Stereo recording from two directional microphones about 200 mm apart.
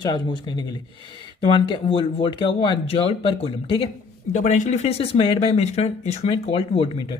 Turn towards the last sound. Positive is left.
turn(degrees=25)  # may be behind; listen again after turning